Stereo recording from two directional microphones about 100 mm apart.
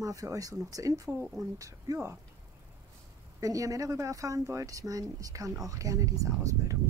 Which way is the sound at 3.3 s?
35° right (ahead or behind).